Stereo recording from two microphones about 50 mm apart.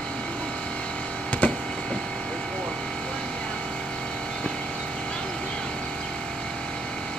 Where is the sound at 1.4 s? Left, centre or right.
Left.